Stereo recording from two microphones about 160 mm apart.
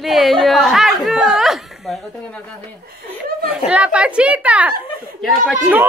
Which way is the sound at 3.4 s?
5° right (ahead or behind).